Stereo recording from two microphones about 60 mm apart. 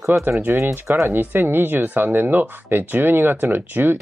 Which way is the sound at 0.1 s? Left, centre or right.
Right.